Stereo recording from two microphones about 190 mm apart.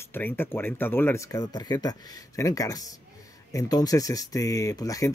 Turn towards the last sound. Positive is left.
turn(degrees=20)  # may be behind; listen again after turning